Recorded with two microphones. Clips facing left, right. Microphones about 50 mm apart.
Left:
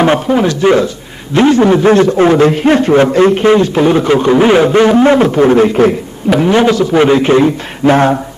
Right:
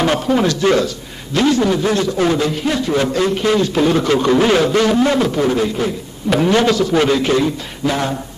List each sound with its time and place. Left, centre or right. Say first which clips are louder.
0.0 s a man's voice: left 5 dB; left
6.3 s a man's voice: left 4 dB; centre; by 8.2 s left